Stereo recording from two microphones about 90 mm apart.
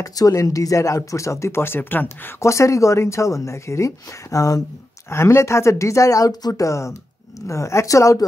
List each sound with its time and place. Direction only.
0.0 s speech: 40° left (ahead or behind)